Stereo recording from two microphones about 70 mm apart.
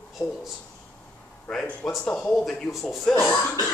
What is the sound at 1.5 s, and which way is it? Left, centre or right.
A man's voice, centre.